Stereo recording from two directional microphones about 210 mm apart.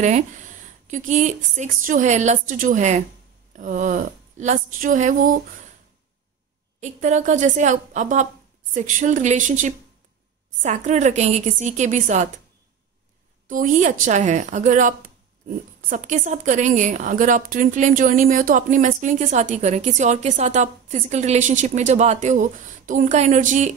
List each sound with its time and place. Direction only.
0.8 s a woman's voice: 35° right (ahead or behind)
6.8 s a woman's voice: 35° right (ahead or behind)
13.5 s a woman's voice: 40° right (ahead or behind)